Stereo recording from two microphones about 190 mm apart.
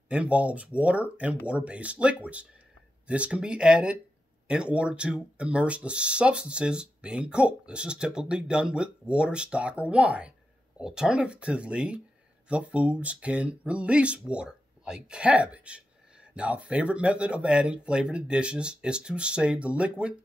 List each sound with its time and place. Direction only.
0.1 s speech: 5° right (ahead or behind)